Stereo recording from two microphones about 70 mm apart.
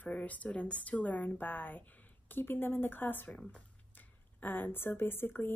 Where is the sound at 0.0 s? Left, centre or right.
Left.